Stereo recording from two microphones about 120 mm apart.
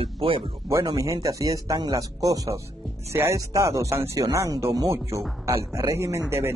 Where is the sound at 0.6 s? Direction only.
30° right (ahead or behind).